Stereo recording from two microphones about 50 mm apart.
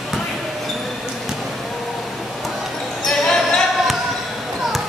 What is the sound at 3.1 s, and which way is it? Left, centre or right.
Basketball bounce, centre.